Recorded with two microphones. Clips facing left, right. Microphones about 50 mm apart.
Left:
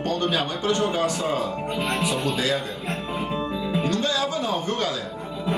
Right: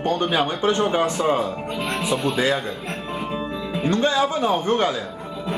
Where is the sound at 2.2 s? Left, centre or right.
Right.